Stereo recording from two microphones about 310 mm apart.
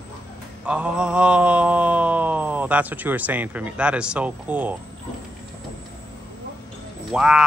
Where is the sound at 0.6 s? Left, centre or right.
Centre.